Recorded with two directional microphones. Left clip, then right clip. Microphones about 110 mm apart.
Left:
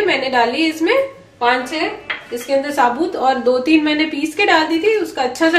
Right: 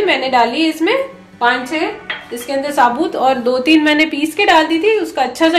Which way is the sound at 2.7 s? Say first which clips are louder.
Right 3 dB; 35° right (ahead or behind).